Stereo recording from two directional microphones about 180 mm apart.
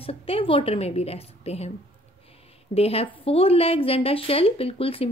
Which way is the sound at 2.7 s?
35° left (ahead or behind).